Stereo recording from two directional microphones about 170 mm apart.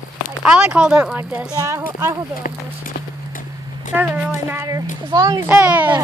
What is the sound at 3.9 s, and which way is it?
Speech, 10° right (ahead or behind).